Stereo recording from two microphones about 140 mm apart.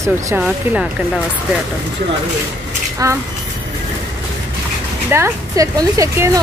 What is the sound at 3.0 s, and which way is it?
Speech, 25° right (ahead or behind).